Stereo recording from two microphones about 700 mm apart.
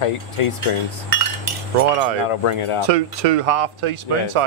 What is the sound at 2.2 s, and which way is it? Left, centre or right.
Speech, left.